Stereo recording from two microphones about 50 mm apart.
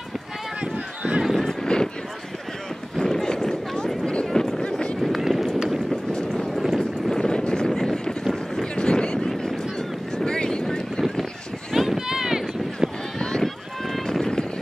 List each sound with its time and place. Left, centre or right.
0.6 s run: right
1.2 s honk: centre
1.5 s a sound: centre
3.0 s a sound: centre
5.2 s run: centre
6.1 s boat: centre
6.5 s vehicle: centre
6.8 s vehicle: centre
9.4 s boat: centre
11.7 s a sound: centre
13.2 s run: centre